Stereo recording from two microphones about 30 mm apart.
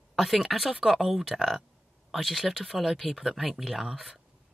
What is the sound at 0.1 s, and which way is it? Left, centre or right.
Speech, centre.